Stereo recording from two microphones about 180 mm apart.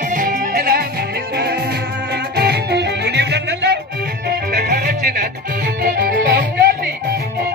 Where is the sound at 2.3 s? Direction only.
65° right (ahead or behind).